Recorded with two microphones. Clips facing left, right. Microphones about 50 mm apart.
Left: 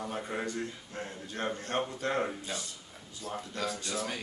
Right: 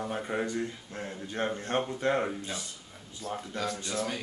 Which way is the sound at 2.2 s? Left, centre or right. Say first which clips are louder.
Right 1 dB; centre.